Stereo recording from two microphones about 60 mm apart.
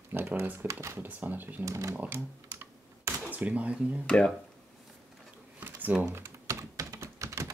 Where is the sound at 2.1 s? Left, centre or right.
Right.